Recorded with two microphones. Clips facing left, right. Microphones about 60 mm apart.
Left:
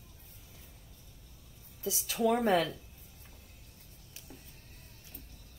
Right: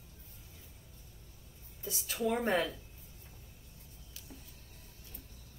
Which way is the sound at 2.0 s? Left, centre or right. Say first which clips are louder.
Left 4 dB; left.